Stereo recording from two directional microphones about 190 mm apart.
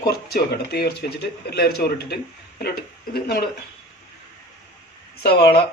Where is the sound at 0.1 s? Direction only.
55° left (ahead or behind).